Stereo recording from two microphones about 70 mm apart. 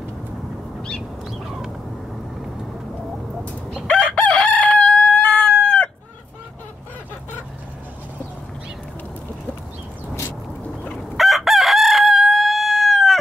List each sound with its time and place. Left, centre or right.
1.2 s a sound: centre
3.8 s crowing: centre
10.6 s fowl: left
11.1 s chicken: centre